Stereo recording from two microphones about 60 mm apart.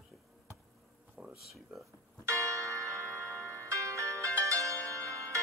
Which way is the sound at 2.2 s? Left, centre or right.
Right.